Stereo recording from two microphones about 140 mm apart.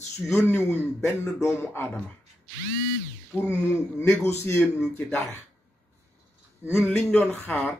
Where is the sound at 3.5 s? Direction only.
20° left (ahead or behind).